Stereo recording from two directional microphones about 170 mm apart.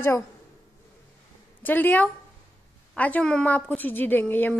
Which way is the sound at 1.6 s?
10° left (ahead or behind).